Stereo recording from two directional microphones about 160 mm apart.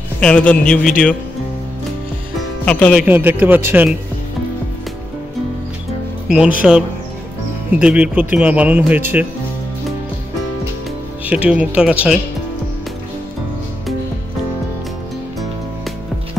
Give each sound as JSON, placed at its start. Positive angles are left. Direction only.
{"t": 0.2, "sound": "a man's voice", "side_deg": 10}
{"t": 2.6, "sound": "a man's voice", "side_deg": 10}
{"t": 3.1, "sound": "speech", "side_deg": -10}
{"t": 6.2, "sound": "speech", "side_deg": -5}
{"t": 11.2, "sound": "speech", "side_deg": -10}